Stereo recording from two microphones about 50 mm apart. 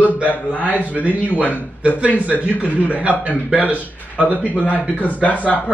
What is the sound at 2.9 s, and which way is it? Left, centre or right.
Speech, right.